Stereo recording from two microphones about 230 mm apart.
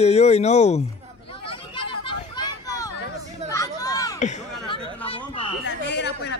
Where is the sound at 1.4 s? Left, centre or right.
Left.